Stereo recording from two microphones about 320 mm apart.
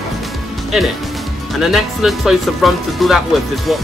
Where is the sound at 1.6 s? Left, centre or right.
Centre.